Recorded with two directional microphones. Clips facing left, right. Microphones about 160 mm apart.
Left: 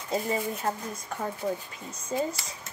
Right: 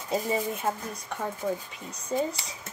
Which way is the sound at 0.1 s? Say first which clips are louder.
Right 1 dB; 5° right (ahead or behind).